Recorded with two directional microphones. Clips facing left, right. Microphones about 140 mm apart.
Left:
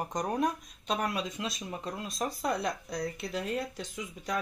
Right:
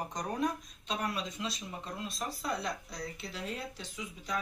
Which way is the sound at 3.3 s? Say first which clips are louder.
Left 6 dB; 50° left (ahead or behind).